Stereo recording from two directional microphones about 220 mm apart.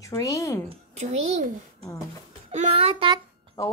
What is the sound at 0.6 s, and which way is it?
A child's voice, 30° right (ahead or behind).